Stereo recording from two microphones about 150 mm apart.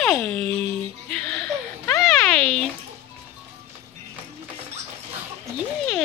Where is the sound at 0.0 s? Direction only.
5° left (ahead or behind).